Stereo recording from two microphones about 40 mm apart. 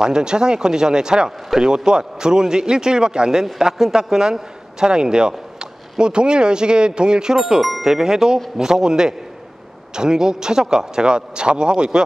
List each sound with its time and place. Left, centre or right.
0.0 s a man's voice: centre
7.3 s a man's voice: centre; by 12.0 s right